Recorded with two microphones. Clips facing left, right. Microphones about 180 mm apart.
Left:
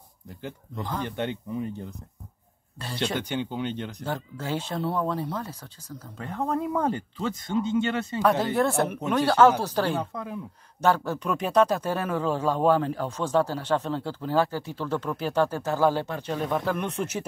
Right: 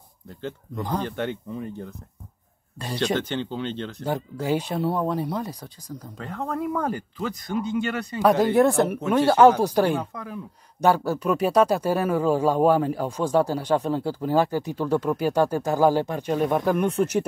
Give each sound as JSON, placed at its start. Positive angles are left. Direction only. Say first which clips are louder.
{"t": 0.3, "sound": "speech", "louder": "right 4 dB", "side_deg": 15}
{"t": 3.2, "sound": "speech", "louder": "right 2 dB", "side_deg": 15}
{"t": 4.0, "sound": "speech", "louder": "right 5 dB", "side_deg": -15}
{"t": 6.2, "sound": "speech", "louder": "left 1 dB", "side_deg": 20}
{"t": 8.2, "sound": "speech", "louder": "right 6 dB", "side_deg": -15}
{"t": 10.1, "sound": "speech", "louder": "left 1 dB", "side_deg": 25}
{"t": 10.8, "sound": "speech", "louder": "right 3 dB", "side_deg": -10}